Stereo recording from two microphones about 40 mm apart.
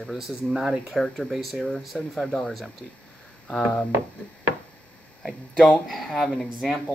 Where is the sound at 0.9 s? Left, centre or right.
Centre.